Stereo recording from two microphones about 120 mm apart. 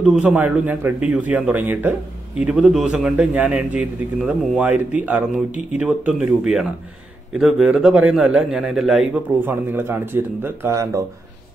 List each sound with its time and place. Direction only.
0.0 s a man's voice: 5° right (ahead or behind)
9.4 s speech: 15° right (ahead or behind)